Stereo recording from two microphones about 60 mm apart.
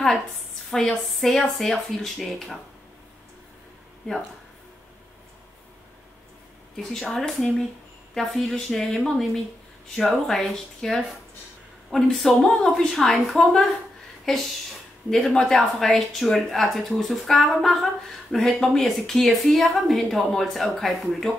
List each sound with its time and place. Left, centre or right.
0.7 s a woman's voice: centre
6.8 s a woman's voice: centre